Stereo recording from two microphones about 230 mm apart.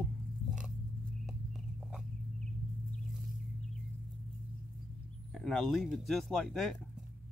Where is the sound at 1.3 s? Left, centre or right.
Centre.